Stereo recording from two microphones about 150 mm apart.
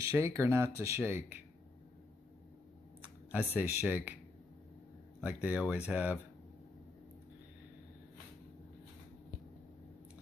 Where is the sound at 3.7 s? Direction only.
10° right (ahead or behind).